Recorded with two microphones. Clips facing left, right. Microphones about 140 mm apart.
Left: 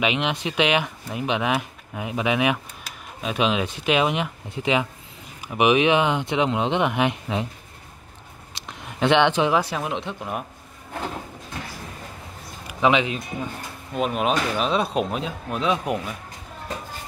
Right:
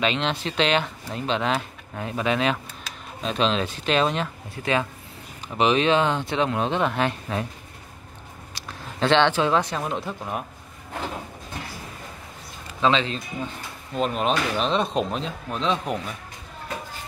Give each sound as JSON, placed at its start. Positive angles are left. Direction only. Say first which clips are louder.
{"t": 0.0, "sound": "speech", "louder": "left 1 dB", "side_deg": 15}
{"t": 8.5, "sound": "speech", "louder": "left 1 dB", "side_deg": 20}
{"t": 12.6, "sound": "speech", "louder": "left 2 dB", "side_deg": 15}